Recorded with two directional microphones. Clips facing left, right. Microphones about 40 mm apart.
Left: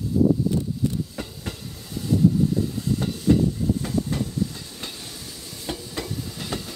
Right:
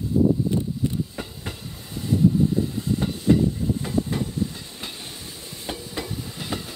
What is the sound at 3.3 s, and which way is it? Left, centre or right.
Train, right.